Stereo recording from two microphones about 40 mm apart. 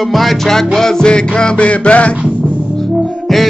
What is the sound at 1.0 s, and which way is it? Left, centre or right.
Music, left.